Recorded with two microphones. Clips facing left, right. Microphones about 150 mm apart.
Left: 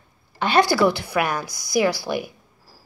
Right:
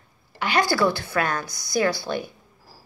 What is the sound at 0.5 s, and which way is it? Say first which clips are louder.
A woman's voice: left 4 dB; 20° left (ahead or behind).